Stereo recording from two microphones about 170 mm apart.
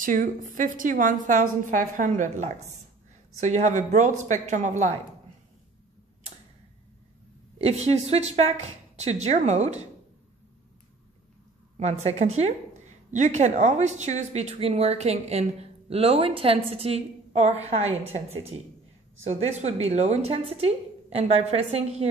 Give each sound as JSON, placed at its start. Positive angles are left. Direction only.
{"t": 0.0, "sound": "a woman's voice", "side_deg": -50}
{"t": 7.5, "sound": "speech", "side_deg": -40}
{"t": 11.7, "sound": "speech", "side_deg": -35}